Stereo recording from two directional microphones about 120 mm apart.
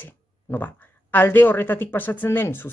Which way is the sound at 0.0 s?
15° left (ahead or behind).